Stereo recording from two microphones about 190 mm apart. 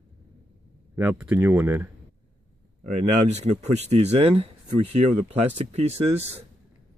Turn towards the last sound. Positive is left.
turn(degrees=-35)  # may be behind; listen again after turning